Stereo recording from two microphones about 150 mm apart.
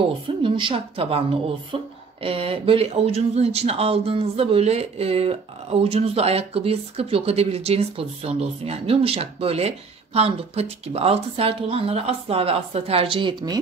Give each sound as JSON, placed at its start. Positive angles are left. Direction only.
{"t": 0.4, "sound": "speech", "side_deg": -35}
{"t": 2.2, "sound": "speech", "side_deg": -40}